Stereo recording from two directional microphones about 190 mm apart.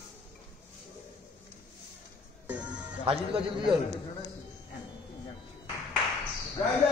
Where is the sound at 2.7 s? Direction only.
30° right (ahead or behind).